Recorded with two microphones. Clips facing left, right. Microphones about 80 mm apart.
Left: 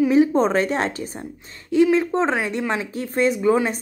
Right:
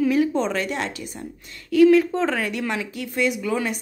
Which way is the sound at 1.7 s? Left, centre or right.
Left.